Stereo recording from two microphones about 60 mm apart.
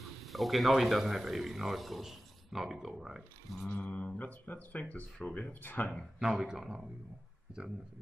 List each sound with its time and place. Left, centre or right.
0.2 s a man's voice: centre
3.7 s a sound: left
6.1 s speech: centre